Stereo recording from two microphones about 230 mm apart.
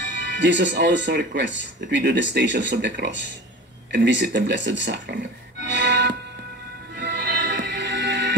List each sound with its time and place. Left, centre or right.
0.4 s speech: right
5.7 s music: right